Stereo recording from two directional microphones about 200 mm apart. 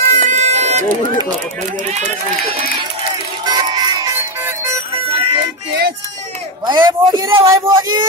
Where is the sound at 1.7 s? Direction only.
35° right (ahead or behind).